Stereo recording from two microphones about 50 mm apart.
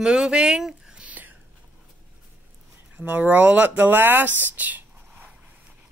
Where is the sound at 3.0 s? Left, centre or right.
Right.